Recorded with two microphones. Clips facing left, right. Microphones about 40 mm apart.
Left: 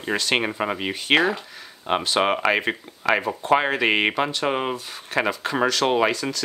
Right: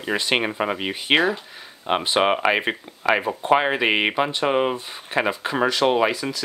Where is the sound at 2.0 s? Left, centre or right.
Right.